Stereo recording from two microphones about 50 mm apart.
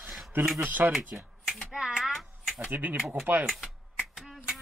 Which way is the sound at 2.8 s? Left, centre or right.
Right.